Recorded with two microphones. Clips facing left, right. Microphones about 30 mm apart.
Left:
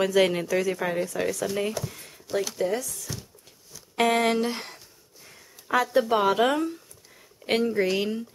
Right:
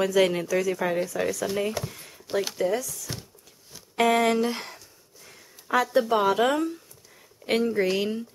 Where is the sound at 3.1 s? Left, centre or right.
Right.